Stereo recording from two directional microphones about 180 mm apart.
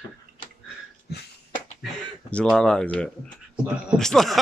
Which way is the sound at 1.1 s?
65° left (ahead or behind).